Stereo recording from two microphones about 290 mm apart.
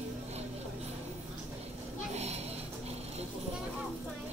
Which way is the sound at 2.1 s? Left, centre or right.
Right.